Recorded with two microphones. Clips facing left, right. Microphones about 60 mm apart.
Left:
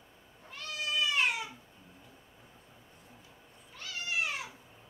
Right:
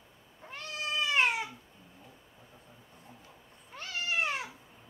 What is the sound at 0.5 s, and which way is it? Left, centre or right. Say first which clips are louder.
Cat: even; right.